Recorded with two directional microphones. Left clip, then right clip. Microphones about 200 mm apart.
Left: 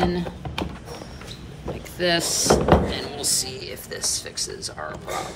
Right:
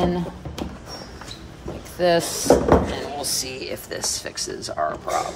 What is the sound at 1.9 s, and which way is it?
Speech, 25° right (ahead or behind).